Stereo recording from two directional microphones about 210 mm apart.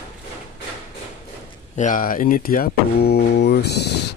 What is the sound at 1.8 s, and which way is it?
Speech, 40° left (ahead or behind).